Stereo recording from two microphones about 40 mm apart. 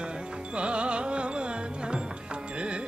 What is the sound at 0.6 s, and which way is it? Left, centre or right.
Music, right.